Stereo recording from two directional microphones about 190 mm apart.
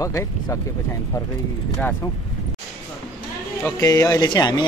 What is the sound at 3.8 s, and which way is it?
Speech, 15° left (ahead or behind).